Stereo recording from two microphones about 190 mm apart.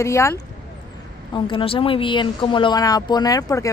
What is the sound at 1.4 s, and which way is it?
Speech, 25° left (ahead or behind).